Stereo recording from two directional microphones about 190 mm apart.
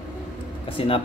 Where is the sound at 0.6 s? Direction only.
30° left (ahead or behind).